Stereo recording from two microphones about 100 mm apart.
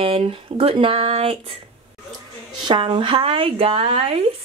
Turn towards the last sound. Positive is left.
turn(degrees=-85)